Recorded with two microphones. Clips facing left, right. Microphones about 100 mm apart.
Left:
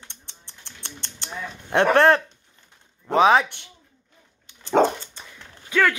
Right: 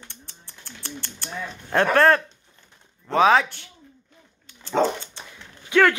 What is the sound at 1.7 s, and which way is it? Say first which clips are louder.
Speech: left 1 dB; 20° left (ahead or behind).